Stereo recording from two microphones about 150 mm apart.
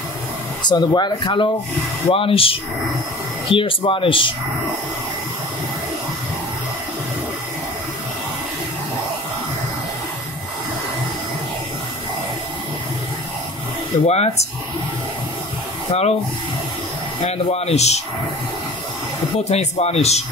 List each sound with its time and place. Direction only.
0.6 s speech: 30° left (ahead or behind)
14.0 s speech: 45° left (ahead or behind)
15.9 s speech: 45° left (ahead or behind)
17.2 s speech: 45° left (ahead or behind)
19.4 s speech: 45° left (ahead or behind)